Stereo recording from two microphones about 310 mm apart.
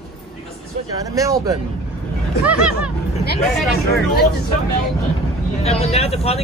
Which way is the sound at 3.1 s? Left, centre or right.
Left.